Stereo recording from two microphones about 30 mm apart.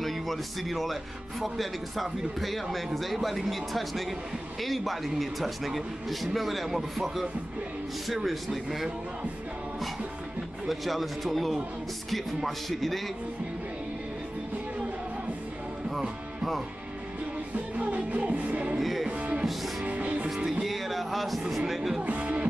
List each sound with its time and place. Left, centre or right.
0.0 s speech: centre
10.7 s speech: centre
15.9 s music: centre
17.6 s music: right
18.8 s speech: centre
19.0 s music: right
19.8 s music: right
20.6 s music: centre
21.5 s speech: centre
22.0 s music: right